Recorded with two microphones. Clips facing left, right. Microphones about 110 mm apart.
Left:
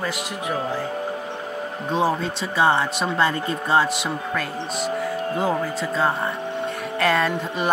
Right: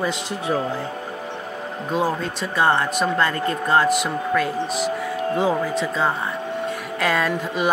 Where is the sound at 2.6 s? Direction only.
15° left (ahead or behind).